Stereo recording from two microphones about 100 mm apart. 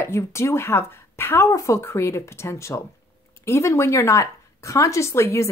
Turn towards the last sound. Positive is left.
turn(degrees=30)  # may be behind; listen again after turning